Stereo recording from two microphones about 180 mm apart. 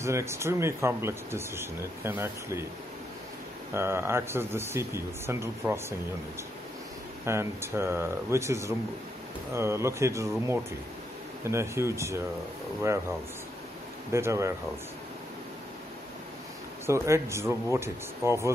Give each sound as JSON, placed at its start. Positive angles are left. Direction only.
{"t": 0.0, "sound": "speech", "side_deg": -15}
{"t": 3.7, "sound": "speech", "side_deg": -15}
{"t": 7.2, "sound": "speech", "side_deg": -15}
{"t": 14.1, "sound": "speech", "side_deg": -15}
{"t": 16.8, "sound": "speech", "side_deg": -15}